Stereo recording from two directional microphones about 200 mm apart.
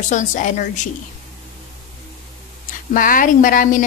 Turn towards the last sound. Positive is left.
turn(degrees=40)  # may be behind; listen again after turning